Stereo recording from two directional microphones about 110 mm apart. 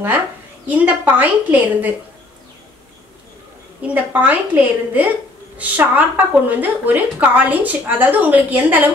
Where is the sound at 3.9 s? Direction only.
15° right (ahead or behind).